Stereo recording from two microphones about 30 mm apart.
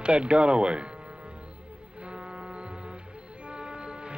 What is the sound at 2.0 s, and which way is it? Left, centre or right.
Music, right.